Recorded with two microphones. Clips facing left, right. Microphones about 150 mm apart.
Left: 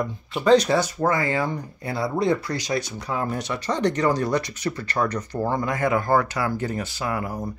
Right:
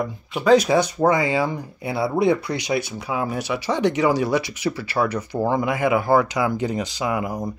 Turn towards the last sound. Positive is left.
turn(degrees=-15)  # may be behind; listen again after turning